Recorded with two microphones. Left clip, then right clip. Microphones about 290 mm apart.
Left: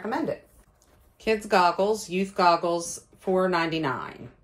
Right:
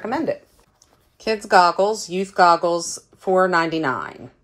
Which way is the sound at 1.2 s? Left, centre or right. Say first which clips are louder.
Right 6 dB; right.